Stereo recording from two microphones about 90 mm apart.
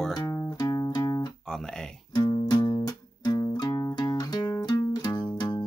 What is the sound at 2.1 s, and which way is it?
Music, 55° left (ahead or behind).